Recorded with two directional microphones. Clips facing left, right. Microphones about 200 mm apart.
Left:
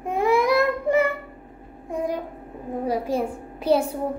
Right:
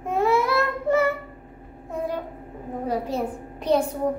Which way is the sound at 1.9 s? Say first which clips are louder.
Left 2 dB; 15° left (ahead or behind).